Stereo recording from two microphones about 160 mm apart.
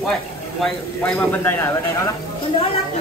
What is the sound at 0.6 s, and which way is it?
Speech, 10° left (ahead or behind).